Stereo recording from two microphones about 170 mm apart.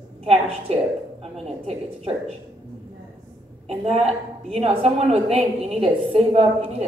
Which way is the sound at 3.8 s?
35° right (ahead or behind).